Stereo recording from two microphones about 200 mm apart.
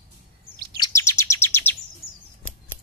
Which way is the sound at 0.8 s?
15° left (ahead or behind).